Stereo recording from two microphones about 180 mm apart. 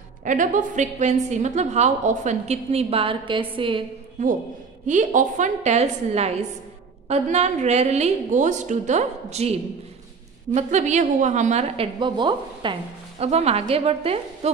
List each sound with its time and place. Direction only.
0.2 s a woman's voice: 45° right (ahead or behind); by 3.8 s 30° right (ahead or behind)
4.8 s a woman's voice: 45° right (ahead or behind)